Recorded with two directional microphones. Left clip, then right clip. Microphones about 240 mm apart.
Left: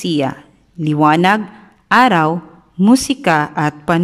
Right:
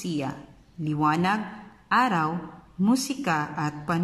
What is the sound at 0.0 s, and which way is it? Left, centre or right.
A woman's voice, left.